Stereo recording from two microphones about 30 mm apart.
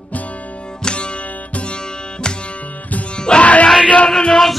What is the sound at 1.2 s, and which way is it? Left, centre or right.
Music, left.